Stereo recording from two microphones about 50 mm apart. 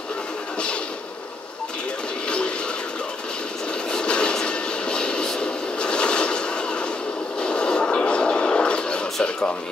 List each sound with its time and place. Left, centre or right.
2.2 s music: left
3.9 s vehicle: centre
7.3 s a sound: centre